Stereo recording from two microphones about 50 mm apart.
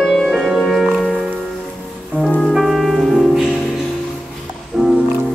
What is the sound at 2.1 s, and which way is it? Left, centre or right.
Music, right.